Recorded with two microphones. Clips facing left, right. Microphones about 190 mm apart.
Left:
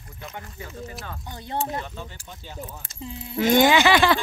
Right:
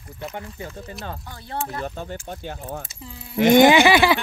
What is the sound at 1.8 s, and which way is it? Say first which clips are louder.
Speech: right 7 dB; 45° right (ahead or behind).